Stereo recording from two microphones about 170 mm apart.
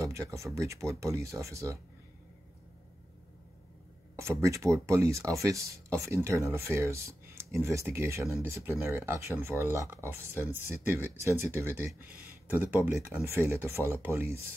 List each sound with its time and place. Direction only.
0.6 s speech: 20° right (ahead or behind)
4.2 s speech: 15° right (ahead or behind)